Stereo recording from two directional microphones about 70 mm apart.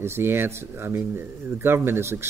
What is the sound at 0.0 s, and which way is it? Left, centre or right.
Speech, right.